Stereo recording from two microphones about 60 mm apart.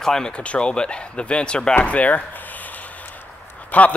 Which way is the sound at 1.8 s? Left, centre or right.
Left.